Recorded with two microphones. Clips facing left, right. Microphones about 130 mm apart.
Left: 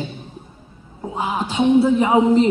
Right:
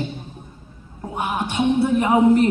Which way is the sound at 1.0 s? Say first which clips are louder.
Left 1 dB; 25° left (ahead or behind).